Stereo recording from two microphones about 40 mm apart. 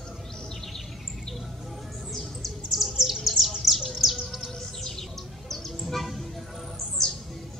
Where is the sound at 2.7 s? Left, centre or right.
Centre.